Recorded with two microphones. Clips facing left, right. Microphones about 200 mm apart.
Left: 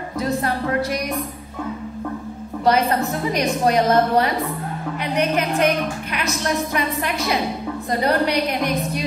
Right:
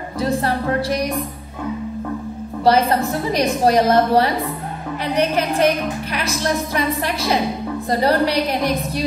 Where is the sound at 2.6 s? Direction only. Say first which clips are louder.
Right 2 dB; 35° right (ahead or behind).